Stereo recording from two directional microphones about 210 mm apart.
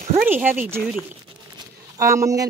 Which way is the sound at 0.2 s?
10° right (ahead or behind).